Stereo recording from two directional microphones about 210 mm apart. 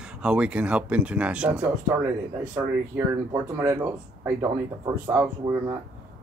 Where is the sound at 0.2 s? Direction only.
5° right (ahead or behind).